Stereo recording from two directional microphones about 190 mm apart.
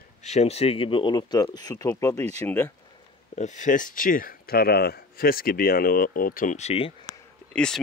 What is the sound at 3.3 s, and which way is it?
Speech, 40° left (ahead or behind).